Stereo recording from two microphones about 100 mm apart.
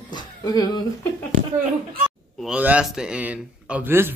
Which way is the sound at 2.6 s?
15° right (ahead or behind).